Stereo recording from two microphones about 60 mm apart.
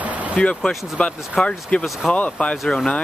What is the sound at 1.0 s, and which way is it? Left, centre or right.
Speech, centre.